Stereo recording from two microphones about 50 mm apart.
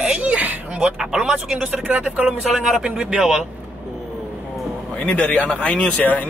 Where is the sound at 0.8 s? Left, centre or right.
Centre.